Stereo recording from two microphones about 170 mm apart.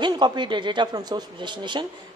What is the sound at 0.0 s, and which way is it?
A man's voice, 25° right (ahead or behind).